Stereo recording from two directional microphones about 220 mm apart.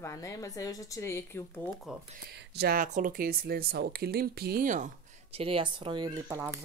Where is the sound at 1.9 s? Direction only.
Centre (ahead or behind).